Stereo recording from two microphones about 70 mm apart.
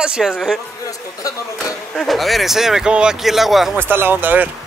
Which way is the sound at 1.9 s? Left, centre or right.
Centre.